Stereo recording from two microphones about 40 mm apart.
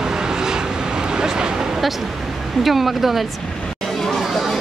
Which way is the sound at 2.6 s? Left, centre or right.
Centre.